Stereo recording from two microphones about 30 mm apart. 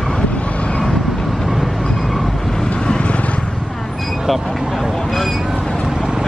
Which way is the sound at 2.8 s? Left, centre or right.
Left.